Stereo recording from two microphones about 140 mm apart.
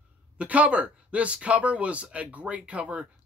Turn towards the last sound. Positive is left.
turn(degrees=-10)  # may be behind; listen again after turning